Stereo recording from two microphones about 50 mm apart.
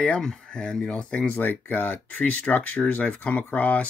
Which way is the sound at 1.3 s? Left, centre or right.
Left.